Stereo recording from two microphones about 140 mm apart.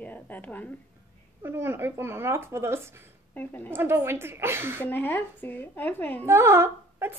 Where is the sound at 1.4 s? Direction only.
15° right (ahead or behind).